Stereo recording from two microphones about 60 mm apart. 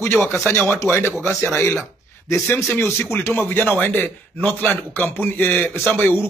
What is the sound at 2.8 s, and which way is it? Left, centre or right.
A man's voice, left.